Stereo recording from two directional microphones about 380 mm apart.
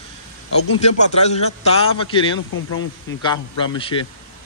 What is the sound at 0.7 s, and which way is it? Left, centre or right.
Speech, centre.